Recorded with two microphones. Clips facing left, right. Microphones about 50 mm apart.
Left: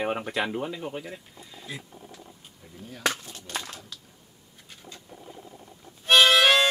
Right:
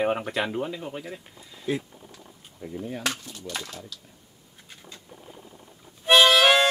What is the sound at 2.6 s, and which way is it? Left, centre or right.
Speech, right.